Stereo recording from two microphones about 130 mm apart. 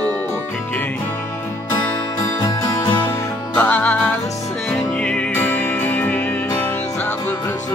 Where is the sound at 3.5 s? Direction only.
10° left (ahead or behind).